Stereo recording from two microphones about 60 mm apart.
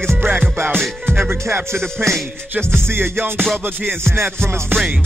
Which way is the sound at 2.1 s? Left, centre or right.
Right.